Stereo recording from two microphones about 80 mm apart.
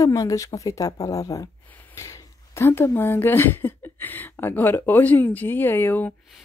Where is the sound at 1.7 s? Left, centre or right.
Left.